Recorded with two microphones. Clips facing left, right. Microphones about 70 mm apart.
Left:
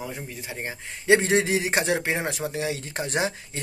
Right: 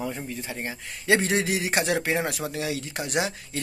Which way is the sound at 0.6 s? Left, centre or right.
Left.